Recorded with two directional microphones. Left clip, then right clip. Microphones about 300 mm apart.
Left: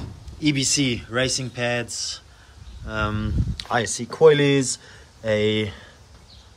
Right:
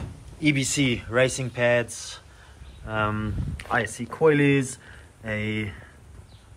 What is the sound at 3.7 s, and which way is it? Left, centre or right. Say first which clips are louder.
Speech: left 2 dB; centre.